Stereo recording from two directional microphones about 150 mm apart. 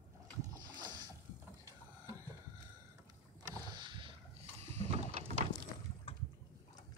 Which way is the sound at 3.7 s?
30° right (ahead or behind).